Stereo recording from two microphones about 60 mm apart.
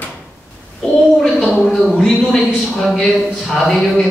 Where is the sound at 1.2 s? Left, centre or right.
Centre.